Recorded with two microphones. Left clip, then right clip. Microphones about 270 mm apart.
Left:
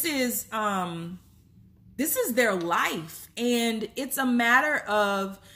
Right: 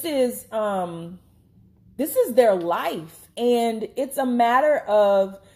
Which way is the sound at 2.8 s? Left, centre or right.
Left.